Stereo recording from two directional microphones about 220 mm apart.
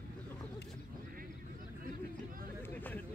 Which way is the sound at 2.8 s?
10° left (ahead or behind).